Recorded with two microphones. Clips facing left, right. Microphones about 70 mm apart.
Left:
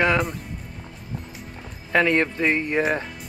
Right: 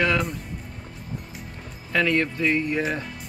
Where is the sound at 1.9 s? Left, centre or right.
Left.